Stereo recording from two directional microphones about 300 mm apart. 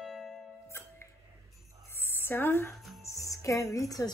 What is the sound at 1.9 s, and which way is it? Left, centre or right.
Music, centre.